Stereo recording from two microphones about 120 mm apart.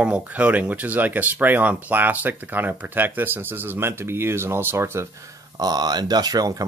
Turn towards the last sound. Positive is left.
turn(degrees=-30)  # may be behind; listen again after turning